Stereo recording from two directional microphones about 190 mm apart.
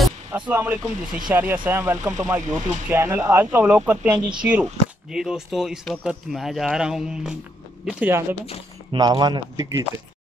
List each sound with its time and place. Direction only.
0.5 s speech: 10° right (ahead or behind)
8.9 s speech: 25° right (ahead or behind)